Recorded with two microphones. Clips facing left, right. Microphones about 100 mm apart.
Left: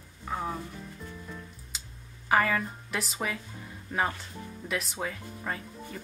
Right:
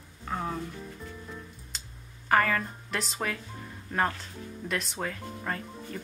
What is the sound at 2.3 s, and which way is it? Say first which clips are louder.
Speech: right 1 dB; 5° left (ahead or behind).